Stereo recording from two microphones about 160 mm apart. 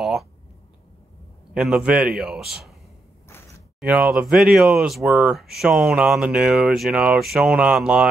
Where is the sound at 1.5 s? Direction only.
5° right (ahead or behind).